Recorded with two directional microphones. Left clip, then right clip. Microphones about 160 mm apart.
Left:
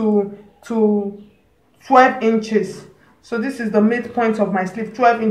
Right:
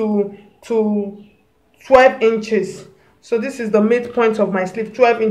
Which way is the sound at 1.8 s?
60° right (ahead or behind).